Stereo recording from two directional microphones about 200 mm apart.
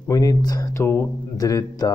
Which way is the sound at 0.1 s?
15° left (ahead or behind).